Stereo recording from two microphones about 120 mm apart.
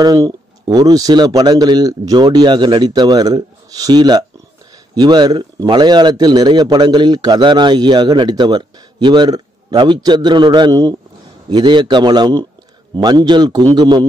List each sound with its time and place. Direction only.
0.0 s a man's voice: 30° right (ahead or behind)